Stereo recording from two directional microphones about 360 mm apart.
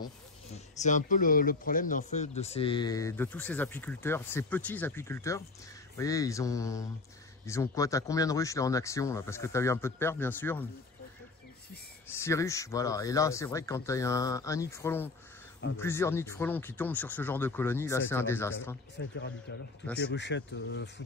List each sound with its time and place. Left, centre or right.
0.7 s speech: left
12.1 s speech: centre
18.9 s speech: left